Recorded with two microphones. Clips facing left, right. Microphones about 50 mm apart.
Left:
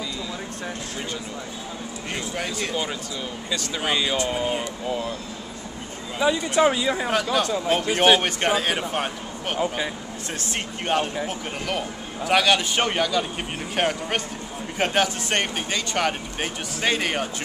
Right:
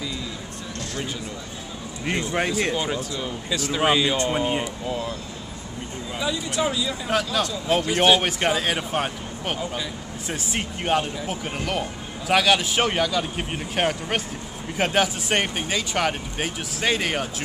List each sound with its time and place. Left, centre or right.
2.0 s speech: right
2.7 s speech: centre
4.3 s speech: centre
4.8 s speech: centre
6.1 s speech: left
7.6 s speech: centre
8.2 s speech: centre